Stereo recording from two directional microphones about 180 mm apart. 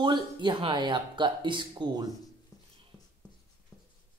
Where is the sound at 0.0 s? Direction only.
25° right (ahead or behind).